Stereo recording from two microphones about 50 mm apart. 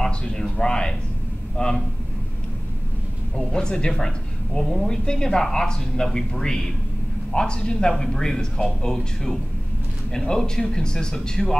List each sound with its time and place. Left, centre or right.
0.0 s a man's voice: centre
3.3 s speech: centre